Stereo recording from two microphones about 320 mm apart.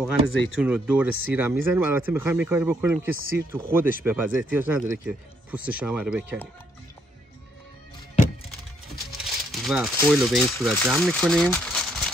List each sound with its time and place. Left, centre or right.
0.1 s speech: left
0.6 s speech: centre
9.2 s speech: centre